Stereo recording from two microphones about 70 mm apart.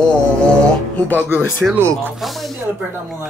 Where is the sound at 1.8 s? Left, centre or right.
Right.